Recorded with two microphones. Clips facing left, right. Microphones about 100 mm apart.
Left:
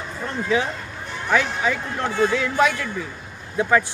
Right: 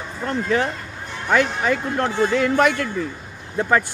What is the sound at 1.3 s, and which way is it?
Speech, 50° right (ahead or behind).